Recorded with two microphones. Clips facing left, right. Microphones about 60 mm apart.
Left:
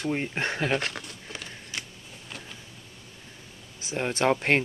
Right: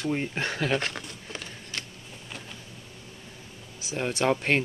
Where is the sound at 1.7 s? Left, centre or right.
Centre.